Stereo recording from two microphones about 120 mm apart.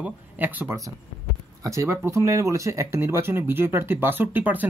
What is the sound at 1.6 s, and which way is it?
Speech, 25° right (ahead or behind).